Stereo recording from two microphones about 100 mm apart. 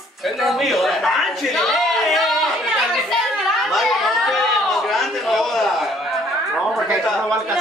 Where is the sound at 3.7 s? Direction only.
Centre (ahead or behind).